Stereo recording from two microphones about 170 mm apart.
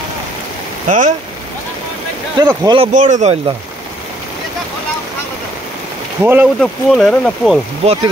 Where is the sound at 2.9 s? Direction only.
45° right (ahead or behind).